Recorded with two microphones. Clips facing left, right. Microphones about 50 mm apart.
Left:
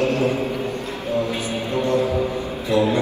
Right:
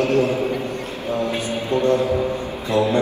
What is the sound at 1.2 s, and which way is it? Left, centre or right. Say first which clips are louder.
Music: right 2 dB; right.